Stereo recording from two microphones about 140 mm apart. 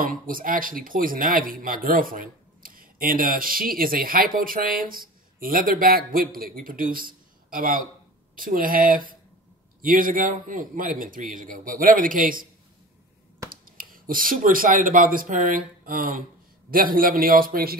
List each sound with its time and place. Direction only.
0.0 s a man's voice: 80° right
13.5 s a man's voice: 90° right